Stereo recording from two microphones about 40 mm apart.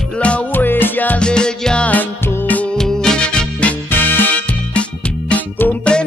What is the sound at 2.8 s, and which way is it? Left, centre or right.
Music, centre.